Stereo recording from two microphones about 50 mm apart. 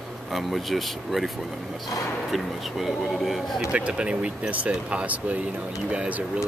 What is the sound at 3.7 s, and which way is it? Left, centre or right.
Speech, centre.